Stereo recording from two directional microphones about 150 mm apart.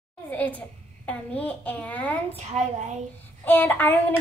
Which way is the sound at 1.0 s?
10° left (ahead or behind).